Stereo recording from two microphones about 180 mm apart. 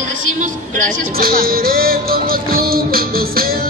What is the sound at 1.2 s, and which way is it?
Music, 55° right (ahead or behind).